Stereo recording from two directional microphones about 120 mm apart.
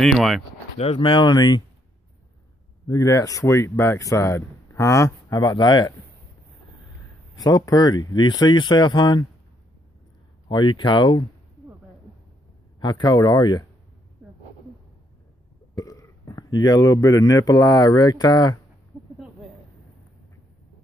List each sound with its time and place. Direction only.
0.0 s speech: centre (ahead or behind)
0.7 s speech: 55° left (ahead or behind); by 1.6 s 35° left (ahead or behind)
2.9 s speech: 30° left (ahead or behind)
5.3 s speech: 35° left (ahead or behind)
7.3 s speech: 35° left (ahead or behind)
10.5 s speech: 40° left (ahead or behind)
12.8 s speech: 35° left (ahead or behind)
15.7 s a man's voice: 30° left (ahead or behind)